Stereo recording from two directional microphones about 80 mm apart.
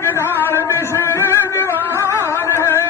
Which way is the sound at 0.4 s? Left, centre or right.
Left.